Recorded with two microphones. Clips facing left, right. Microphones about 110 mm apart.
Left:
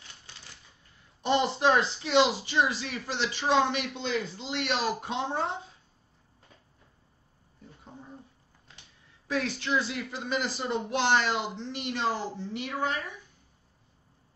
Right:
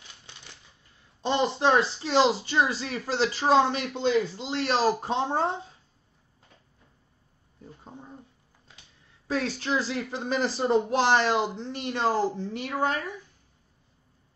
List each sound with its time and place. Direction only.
1.2 s speech: 25° right (ahead or behind)
9.3 s speech: 35° right (ahead or behind)